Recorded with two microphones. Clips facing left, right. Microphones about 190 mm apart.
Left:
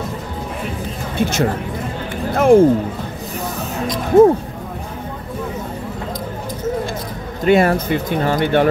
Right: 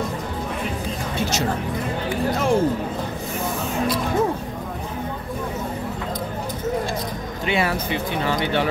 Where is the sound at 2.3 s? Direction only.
55° left (ahead or behind).